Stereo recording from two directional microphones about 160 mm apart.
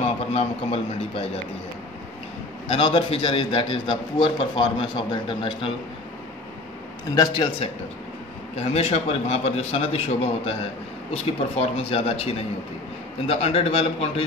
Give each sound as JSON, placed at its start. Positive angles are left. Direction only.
{"t": 0.0, "sound": "a man's voice", "side_deg": 40}
{"t": 2.7, "sound": "a man's voice", "side_deg": 35}
{"t": 7.1, "sound": "a man's voice", "side_deg": 25}
{"t": 8.5, "sound": "a man's voice", "side_deg": 40}